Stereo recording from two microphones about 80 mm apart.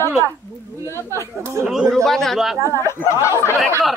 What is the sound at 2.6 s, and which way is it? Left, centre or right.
Speech, left.